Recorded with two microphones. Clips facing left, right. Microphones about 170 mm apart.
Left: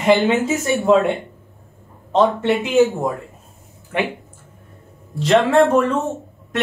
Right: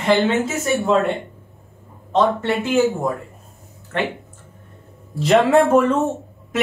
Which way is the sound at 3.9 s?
15° left (ahead or behind).